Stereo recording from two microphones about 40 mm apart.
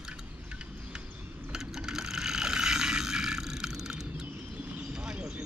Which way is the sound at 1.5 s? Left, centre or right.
Centre.